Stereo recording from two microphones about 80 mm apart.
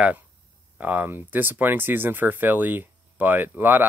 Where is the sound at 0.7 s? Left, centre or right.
Right.